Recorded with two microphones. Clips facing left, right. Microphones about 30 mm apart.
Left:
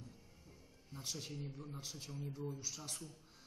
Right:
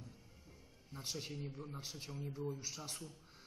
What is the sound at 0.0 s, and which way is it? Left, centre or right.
Music, centre.